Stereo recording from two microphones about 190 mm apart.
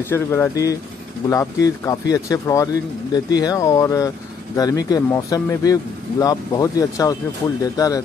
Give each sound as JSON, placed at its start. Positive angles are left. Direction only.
{"t": 0.0, "sound": "speech", "side_deg": 10}